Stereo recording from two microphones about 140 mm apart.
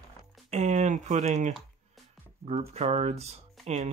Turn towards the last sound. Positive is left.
turn(degrees=-60)  # may be behind; listen again after turning